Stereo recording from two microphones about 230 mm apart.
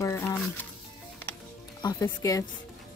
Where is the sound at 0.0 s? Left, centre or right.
Centre.